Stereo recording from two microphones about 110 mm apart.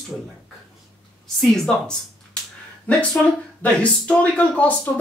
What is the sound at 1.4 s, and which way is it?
Speech, 5° left (ahead or behind).